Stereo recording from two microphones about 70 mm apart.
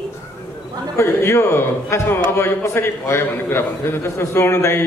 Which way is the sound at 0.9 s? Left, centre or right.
Left.